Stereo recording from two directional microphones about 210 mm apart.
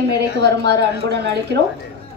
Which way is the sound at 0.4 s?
55° right (ahead or behind).